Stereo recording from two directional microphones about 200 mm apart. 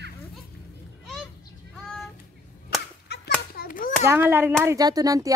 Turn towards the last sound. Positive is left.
turn(degrees=-15)  # may be behind; listen again after turning